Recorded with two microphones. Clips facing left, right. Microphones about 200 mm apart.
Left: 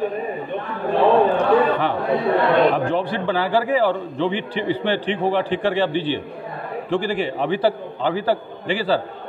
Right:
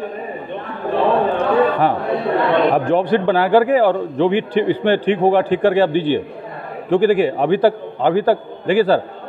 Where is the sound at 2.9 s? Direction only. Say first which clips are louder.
Right 6 dB; 50° right (ahead or behind).